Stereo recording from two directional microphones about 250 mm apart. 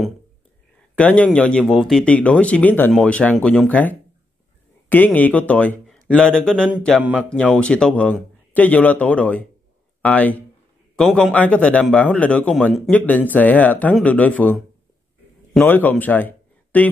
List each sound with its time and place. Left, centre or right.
0.9 s speech: centre